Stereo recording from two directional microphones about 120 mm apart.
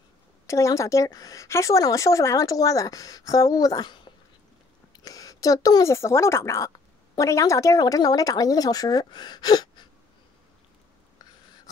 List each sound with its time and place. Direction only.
0.5 s a woman's voice: 25° left (ahead or behind)